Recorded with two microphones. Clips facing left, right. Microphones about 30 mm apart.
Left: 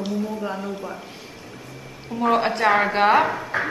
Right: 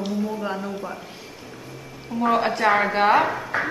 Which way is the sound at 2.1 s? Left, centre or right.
Centre.